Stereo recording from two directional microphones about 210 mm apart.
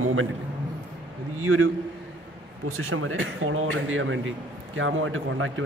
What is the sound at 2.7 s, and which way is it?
A man's voice, 75° right (ahead or behind).